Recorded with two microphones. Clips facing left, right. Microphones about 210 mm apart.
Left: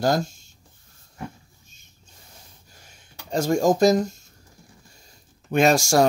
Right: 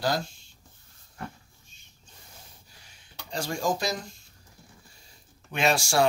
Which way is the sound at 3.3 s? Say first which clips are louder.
Left 9 dB; 45° left (ahead or behind).